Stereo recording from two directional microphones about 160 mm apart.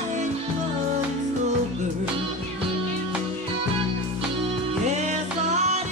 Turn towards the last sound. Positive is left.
turn(degrees=-45)  # may be behind; listen again after turning